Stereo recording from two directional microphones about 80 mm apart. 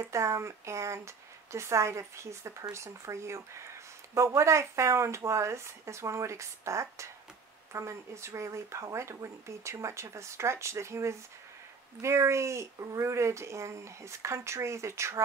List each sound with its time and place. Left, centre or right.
0.0 s speech: right